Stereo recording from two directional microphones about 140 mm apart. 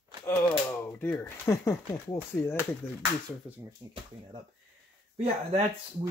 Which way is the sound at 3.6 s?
25° right (ahead or behind).